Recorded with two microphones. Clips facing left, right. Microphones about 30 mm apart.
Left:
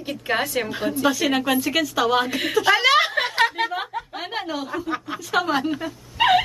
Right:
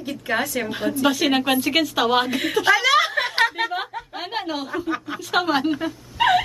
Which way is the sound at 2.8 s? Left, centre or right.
Left.